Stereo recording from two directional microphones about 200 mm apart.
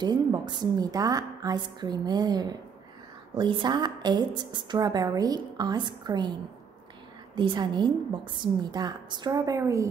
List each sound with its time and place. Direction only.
0.0 s a woman's voice: 20° right (ahead or behind)
7.3 s a woman's voice: 20° right (ahead or behind)